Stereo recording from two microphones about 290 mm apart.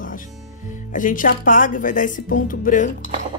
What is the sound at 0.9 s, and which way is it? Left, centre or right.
A woman's voice, left.